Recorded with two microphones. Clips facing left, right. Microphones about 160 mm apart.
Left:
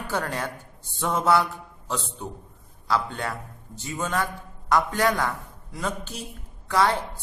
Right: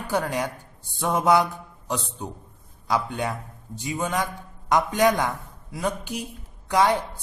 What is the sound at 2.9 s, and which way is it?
A man's voice, 15° right (ahead or behind).